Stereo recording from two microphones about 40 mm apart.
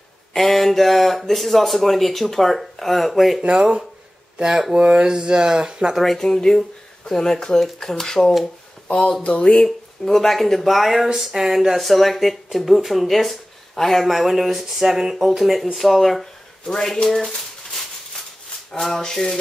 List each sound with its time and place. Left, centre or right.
0.3 s speech: centre
3.4 s speech: right
6.0 s a sound: centre
8.8 s speech: left
9.7 s speech: centre
14.0 s speech: centre
16.6 s speech: centre
18.7 s a sound: centre